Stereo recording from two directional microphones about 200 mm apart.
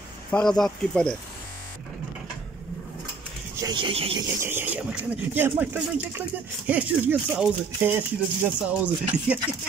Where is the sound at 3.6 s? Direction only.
20° right (ahead or behind).